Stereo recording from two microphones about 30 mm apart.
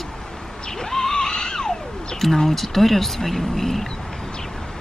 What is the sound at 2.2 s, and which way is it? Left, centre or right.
Speech, centre.